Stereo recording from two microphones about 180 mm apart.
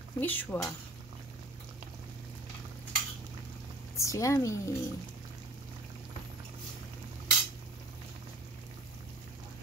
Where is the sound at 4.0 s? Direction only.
15° left (ahead or behind).